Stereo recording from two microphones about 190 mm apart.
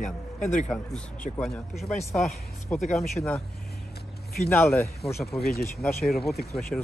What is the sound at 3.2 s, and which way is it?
Speech, 15° left (ahead or behind).